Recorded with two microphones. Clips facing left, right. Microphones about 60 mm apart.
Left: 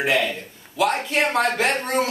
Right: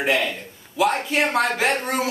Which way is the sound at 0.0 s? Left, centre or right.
Centre.